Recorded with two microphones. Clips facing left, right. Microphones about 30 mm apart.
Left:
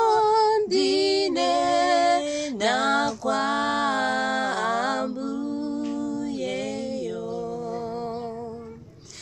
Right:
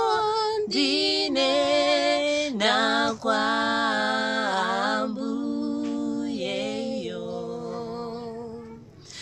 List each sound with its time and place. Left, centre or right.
0.2 s music: centre
0.7 s music: right
2.6 s a sound: right
3.3 s music: right
5.0 s music: centre
5.9 s music: right